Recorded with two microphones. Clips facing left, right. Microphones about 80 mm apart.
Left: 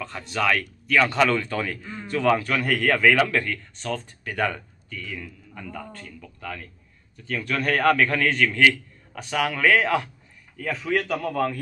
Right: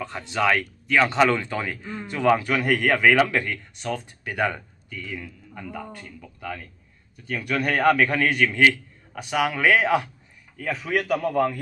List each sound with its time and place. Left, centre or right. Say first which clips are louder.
0.0 s speech: right 2 dB; right